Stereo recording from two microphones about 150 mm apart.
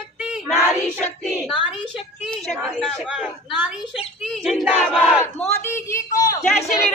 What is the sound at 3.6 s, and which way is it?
Battle cry, 5° right (ahead or behind).